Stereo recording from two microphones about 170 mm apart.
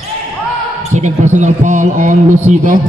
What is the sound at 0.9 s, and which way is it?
A man's voice, 45° right (ahead or behind).